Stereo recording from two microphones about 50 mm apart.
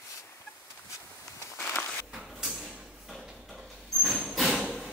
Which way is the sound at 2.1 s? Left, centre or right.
Centre.